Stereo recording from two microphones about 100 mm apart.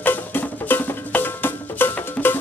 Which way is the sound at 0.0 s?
20° left (ahead or behind).